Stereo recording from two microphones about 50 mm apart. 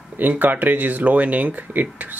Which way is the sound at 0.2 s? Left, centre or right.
Right.